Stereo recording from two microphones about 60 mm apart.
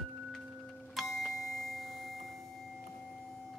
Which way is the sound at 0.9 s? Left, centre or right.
Centre.